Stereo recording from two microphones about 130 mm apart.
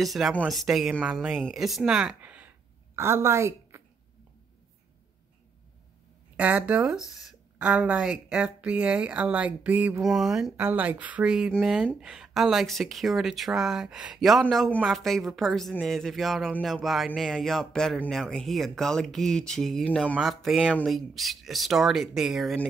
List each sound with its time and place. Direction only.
0.0 s a woman's voice: centre (ahead or behind); by 3.8 s 20° right (ahead or behind)
6.3 s speech: 10° right (ahead or behind)
10.0 s speech: centre (ahead or behind)
10.6 s speech: 15° right (ahead or behind)